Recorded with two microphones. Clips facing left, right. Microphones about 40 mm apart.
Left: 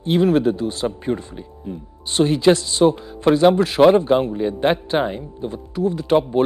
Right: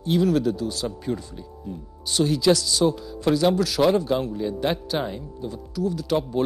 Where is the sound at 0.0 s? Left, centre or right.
Left.